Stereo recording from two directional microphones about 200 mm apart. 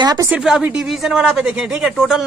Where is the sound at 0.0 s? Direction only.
20° right (ahead or behind).